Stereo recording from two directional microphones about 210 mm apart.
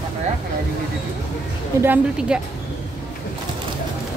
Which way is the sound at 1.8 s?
10° right (ahead or behind).